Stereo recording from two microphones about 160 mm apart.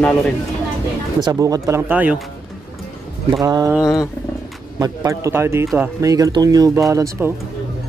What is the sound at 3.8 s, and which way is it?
Wild animals, 20° left (ahead or behind).